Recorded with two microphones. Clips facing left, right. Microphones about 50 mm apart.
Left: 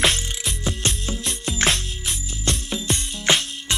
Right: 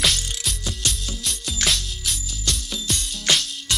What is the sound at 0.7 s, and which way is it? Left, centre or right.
Music, left.